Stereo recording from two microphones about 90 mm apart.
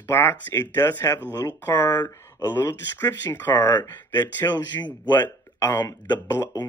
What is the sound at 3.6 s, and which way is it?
Speech, 45° left (ahead or behind).